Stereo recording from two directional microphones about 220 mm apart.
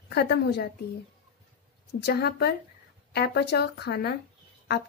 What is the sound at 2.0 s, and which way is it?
A woman's voice, 45° left (ahead or behind).